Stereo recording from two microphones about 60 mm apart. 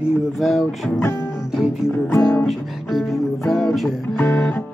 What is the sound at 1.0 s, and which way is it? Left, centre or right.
Speech, left.